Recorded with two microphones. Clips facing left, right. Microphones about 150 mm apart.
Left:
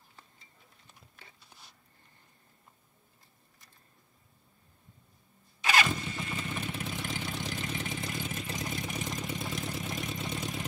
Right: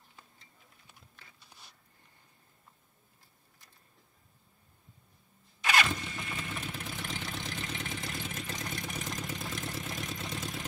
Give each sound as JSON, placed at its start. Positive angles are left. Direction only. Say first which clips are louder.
{"t": 5.6, "sound": "engine starting", "louder": "left 1 dB", "side_deg": 0}